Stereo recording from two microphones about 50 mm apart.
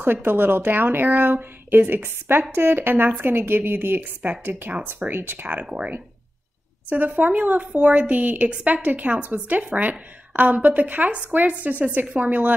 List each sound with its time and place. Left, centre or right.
0.0 s speech: right
6.9 s a woman's voice: right